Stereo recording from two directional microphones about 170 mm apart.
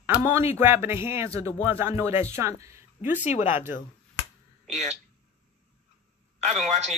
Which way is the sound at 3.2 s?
40° left (ahead or behind).